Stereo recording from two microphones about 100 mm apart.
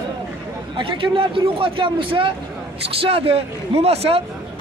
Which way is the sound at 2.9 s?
70° right (ahead or behind).